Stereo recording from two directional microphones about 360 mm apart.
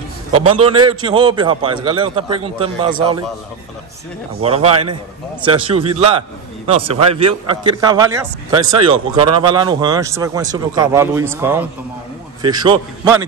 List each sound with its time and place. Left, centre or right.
0.5 s a man's voice: centre
4.4 s a man's voice: centre